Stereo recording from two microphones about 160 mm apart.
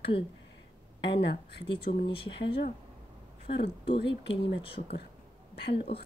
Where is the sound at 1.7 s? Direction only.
35° left (ahead or behind).